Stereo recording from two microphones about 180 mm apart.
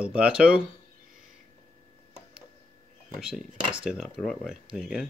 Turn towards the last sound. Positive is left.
turn(degrees=0)  # may be behind; listen again after turning